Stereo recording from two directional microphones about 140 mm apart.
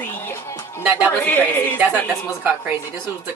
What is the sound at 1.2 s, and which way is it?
Speech, 15° left (ahead or behind).